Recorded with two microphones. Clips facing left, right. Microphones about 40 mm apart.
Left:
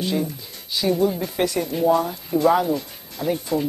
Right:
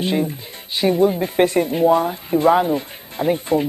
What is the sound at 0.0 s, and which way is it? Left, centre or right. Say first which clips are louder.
Speech: right 4 dB; right.